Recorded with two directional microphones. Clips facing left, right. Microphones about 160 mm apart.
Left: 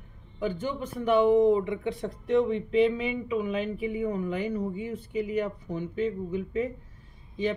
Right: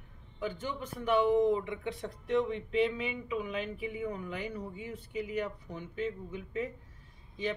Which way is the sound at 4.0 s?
35° left (ahead or behind).